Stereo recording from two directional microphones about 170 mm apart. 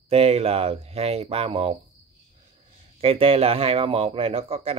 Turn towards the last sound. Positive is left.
turn(degrees=-35)  # may be behind; listen again after turning